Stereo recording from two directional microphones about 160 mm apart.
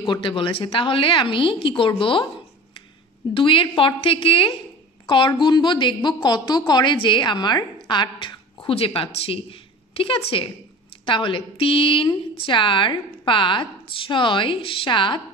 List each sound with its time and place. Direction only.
0.0 s a woman's voice: 30° left (ahead or behind)
3.3 s a woman's voice: 35° left (ahead or behind)